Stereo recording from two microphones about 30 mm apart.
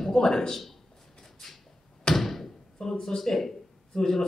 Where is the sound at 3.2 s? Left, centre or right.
Centre.